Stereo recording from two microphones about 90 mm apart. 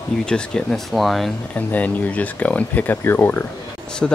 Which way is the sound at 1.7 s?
20° left (ahead or behind).